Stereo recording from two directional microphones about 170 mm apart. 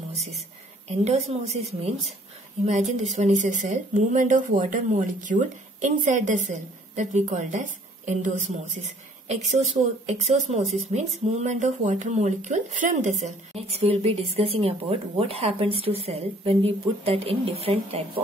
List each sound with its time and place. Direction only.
0.1 s whispering: 40° right (ahead or behind)
0.8 s a woman's voice: 40° right (ahead or behind)